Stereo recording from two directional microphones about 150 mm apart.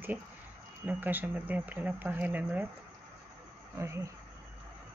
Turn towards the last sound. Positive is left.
turn(degrees=-20)  # may be behind; listen again after turning